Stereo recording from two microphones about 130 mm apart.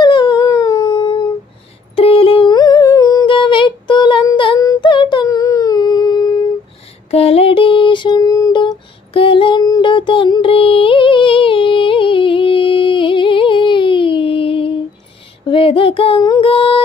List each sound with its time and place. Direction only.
0.0 s dog: 35° left (ahead or behind)
2.0 s a sound: 45° left (ahead or behind); by 3.3 s 30° left (ahead or behind)
3.3 s music: 40° left (ahead or behind)
4.6 s humming: 30° left (ahead or behind)
7.1 s music: 50° left (ahead or behind); by 8.7 s 30° left (ahead or behind)
9.1 s music: 45° left (ahead or behind)
15.5 s child singing: 45° left (ahead or behind)
16.2 s music: 30° left (ahead or behind)
16.4 s music: 45° left (ahead or behind)